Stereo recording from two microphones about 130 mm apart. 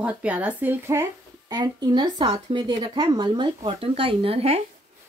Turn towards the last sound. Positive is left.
turn(degrees=-50)  # may be behind; listen again after turning